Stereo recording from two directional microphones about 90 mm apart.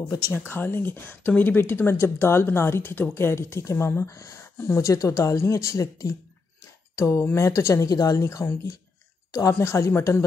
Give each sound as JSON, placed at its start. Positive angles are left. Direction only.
{"t": 0.3, "sound": "a woman's voice", "side_deg": 25}